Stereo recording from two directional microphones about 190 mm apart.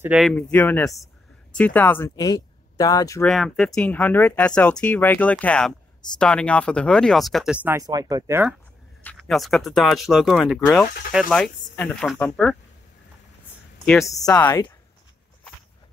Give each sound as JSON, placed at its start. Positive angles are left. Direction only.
{"t": 0.0, "sound": "speech", "side_deg": -5}
{"t": 0.3, "sound": "speech", "side_deg": 10}
{"t": 3.3, "sound": "speech", "side_deg": 0}
{"t": 7.8, "sound": "speech", "side_deg": -20}
{"t": 9.0, "sound": "speech", "side_deg": 0}
{"t": 13.8, "sound": "speech", "side_deg": 0}